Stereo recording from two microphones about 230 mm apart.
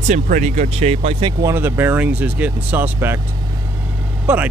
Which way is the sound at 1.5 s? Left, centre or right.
Centre.